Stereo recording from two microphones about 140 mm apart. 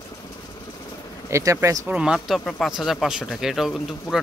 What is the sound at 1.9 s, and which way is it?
Speech, 5° right (ahead or behind).